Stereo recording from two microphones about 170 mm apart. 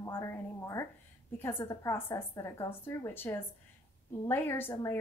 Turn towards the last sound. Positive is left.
turn(degrees=10)  # may be behind; listen again after turning